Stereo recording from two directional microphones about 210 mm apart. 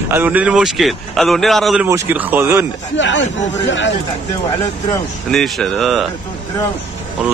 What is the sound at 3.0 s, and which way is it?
Speech, 60° left (ahead or behind).